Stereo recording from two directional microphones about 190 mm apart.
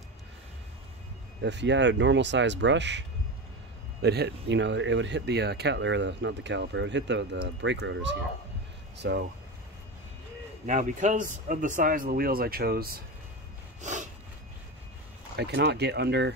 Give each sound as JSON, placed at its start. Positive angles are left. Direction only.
{"t": 1.4, "sound": "speech", "side_deg": -65}
{"t": 10.7, "sound": "speech", "side_deg": -40}
{"t": 13.7, "sound": "a sound", "side_deg": -40}
{"t": 15.3, "sound": "speech", "side_deg": -60}